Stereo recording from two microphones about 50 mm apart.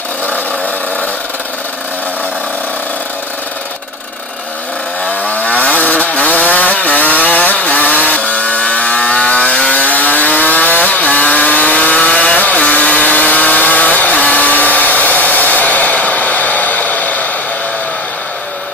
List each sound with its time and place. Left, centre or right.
5.0 s chainsaw: left